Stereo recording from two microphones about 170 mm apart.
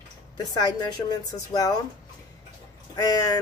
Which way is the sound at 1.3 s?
20° left (ahead or behind).